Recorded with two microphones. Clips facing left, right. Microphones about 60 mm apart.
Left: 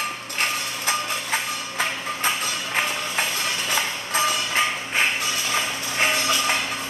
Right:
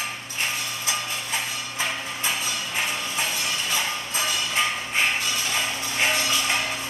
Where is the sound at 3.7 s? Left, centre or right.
Left.